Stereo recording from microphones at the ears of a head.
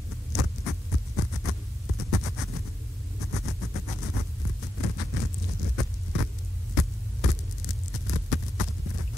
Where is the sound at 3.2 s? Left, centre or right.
Left.